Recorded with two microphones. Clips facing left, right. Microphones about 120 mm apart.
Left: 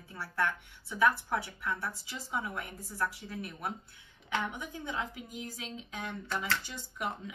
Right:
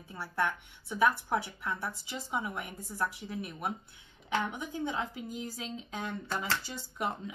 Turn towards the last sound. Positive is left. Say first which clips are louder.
# right 2 dB
turn(degrees=-30)  # may be behind; listen again after turning